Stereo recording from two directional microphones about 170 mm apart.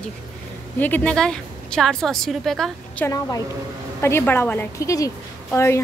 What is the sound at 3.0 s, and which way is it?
A woman's voice, 20° left (ahead or behind).